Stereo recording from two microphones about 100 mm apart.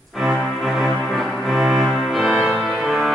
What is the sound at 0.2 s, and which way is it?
Music, centre (ahead or behind).